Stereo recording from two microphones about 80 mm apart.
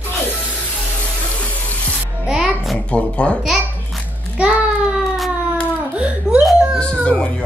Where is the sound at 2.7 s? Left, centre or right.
Centre.